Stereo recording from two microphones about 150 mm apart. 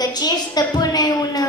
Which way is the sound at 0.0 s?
25° left (ahead or behind).